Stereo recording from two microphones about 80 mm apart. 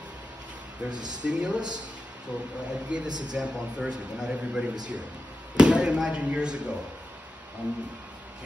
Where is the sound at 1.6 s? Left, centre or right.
Right.